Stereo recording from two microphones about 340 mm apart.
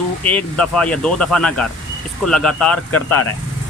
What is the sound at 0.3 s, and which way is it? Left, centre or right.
Speech, centre.